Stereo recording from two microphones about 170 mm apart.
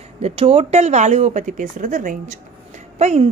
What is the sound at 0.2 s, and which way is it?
A woman's voice, 35° right (ahead or behind).